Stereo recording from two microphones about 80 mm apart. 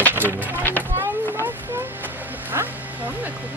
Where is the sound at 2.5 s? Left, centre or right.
Right.